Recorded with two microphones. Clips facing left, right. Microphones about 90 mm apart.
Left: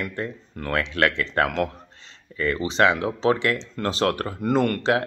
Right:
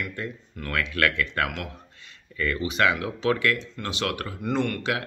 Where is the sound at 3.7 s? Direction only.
40° left (ahead or behind).